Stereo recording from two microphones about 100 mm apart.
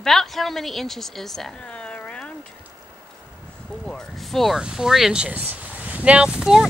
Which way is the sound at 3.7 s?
10° left (ahead or behind).